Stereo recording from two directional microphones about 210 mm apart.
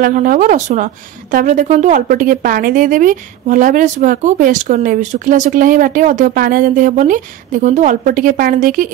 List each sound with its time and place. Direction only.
0.0 s speech: 40° right (ahead or behind)